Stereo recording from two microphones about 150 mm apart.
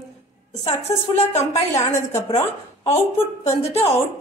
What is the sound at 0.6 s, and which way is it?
Speech, 45° left (ahead or behind).